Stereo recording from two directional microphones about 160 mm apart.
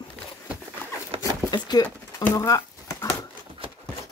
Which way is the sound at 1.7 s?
25° left (ahead or behind).